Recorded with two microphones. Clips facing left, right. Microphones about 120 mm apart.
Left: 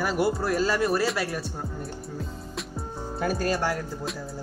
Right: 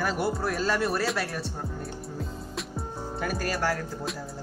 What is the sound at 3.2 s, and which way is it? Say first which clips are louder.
Speech: left 3 dB; 25° left (ahead or behind).